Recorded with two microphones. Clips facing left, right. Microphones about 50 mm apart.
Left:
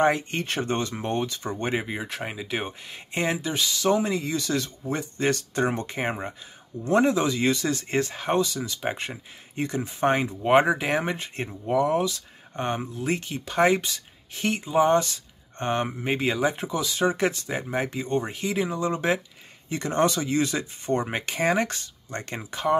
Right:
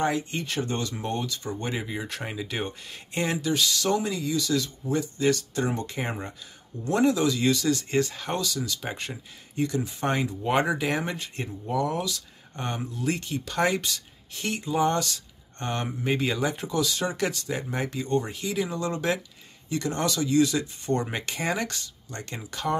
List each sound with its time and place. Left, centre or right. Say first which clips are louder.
0.0 s speech: left 4 dB; left
2.0 s speech: left 1 dB; centre
4.1 s speech: even; left